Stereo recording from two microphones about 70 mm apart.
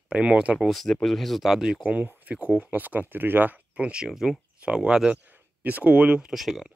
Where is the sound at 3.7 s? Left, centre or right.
Centre.